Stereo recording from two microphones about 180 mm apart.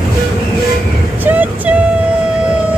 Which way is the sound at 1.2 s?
10° right (ahead or behind).